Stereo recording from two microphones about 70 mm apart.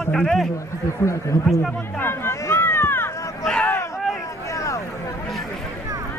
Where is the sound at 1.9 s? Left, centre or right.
Left.